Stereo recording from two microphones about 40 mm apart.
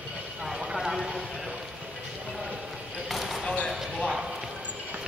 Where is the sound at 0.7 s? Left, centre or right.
Centre.